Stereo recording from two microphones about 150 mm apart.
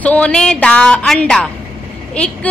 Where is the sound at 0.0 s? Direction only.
10° left (ahead or behind).